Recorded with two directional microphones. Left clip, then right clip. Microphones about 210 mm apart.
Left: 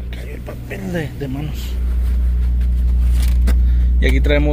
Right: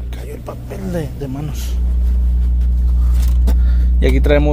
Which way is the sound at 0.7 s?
5° right (ahead or behind).